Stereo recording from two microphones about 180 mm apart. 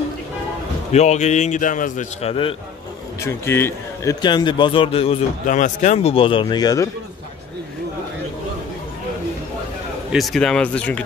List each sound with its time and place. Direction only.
0.9 s a man's voice: 40° left (ahead or behind)
3.2 s a man's voice: 15° left (ahead or behind); by 5.2 s 30° left (ahead or behind)
5.5 s speech: 45° left (ahead or behind)
6.1 s a man's voice: 30° left (ahead or behind)
10.1 s speech: centre (ahead or behind)